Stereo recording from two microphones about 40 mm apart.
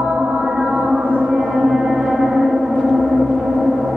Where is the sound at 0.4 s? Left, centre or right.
Centre.